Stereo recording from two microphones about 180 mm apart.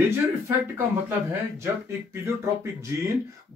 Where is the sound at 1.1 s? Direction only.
15° right (ahead or behind).